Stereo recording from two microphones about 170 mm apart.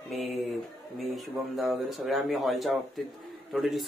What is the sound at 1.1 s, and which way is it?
Speech, centre (ahead or behind).